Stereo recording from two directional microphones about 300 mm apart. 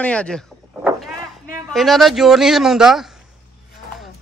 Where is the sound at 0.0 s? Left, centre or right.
Centre.